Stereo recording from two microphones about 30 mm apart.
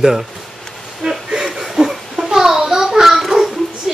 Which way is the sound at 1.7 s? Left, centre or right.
Centre.